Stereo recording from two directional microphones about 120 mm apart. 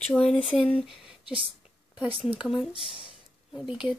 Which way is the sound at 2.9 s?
50° left (ahead or behind).